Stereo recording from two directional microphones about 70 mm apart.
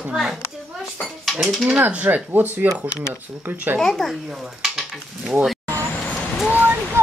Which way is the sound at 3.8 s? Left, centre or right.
Centre.